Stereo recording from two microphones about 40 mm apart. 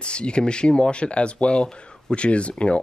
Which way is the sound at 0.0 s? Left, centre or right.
Left.